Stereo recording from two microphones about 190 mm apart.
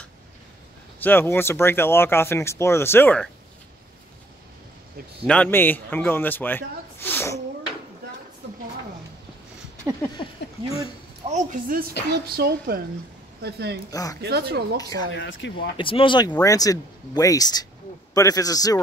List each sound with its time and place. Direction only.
1.0 s speech: 10° left (ahead or behind)
5.2 s a man's voice: 5° left (ahead or behind)
10.2 s speech: 25° left (ahead or behind)
11.2 s a woman's voice: 45° right (ahead or behind)
12.1 s speech: 55° right (ahead or behind)
13.8 s speech: 20° left (ahead or behind)
14.2 s speech: 60° right (ahead or behind)
14.8 s speech: 20° left (ahead or behind)
15.1 s speech: 80° left
15.8 s speech: 25° left (ahead or behind)